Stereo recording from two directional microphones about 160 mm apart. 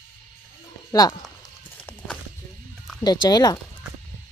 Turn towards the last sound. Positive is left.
turn(degrees=25)  # may be behind; listen again after turning